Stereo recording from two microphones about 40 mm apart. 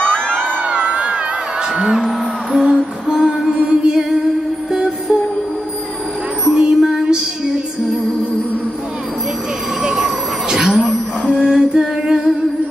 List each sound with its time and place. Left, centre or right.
0.7 s crowd: right
2.5 s music: centre
6.5 s music: centre
9.8 s vehicle: centre
10.6 s a sound: right
11.2 s music: right
11.5 s music: centre
11.8 s humming: centre